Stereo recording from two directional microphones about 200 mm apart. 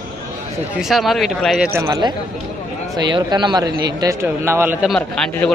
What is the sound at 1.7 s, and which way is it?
A man's voice, 20° right (ahead or behind).